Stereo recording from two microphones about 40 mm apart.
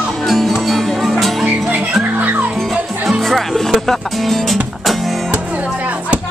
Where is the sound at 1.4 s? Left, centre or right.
Right.